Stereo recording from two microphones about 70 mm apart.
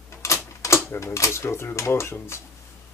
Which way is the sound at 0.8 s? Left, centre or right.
Left.